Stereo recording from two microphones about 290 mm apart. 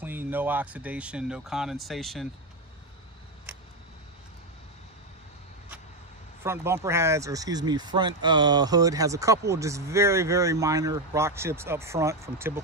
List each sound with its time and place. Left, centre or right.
0.0 s speech: centre
6.4 s speech: centre